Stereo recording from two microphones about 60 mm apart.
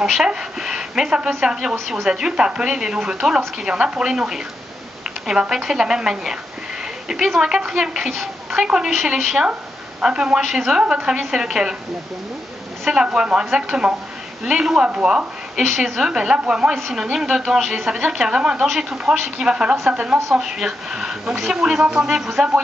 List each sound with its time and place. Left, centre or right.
0.0 s a woman's voice: centre
10.0 s a woman's voice: centre
12.9 s a woman's voice: centre
20.3 s speech: centre